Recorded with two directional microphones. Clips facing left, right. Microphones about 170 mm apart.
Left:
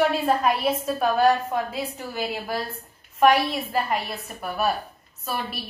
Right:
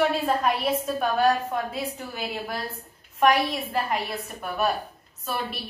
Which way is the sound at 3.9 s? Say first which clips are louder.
Left 1 dB; 5° left (ahead or behind).